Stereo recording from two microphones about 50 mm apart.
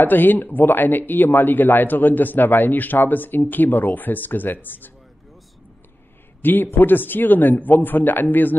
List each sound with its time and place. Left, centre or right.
0.0 s a man's voice: left
6.4 s a man's voice: left